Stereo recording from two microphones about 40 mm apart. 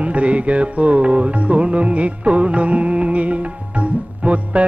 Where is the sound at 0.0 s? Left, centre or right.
Right.